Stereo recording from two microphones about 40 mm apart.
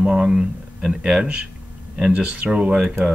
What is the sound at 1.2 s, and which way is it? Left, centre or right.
Speech, right.